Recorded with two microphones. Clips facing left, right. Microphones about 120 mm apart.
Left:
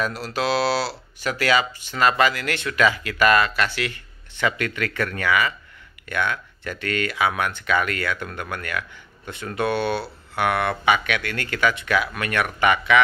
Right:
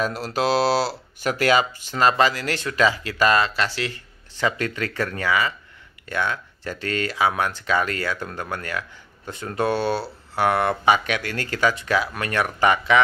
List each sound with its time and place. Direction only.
0.0 s speech: 40° right (ahead or behind)